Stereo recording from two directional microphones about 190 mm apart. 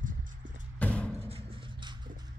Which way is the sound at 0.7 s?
5° left (ahead or behind).